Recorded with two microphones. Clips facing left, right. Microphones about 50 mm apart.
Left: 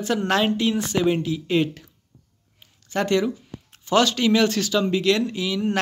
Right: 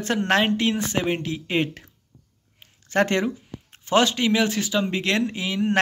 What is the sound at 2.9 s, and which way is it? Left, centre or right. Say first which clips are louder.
Speech: even; right.